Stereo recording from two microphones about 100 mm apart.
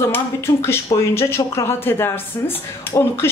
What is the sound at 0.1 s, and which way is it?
Speech, 25° left (ahead or behind).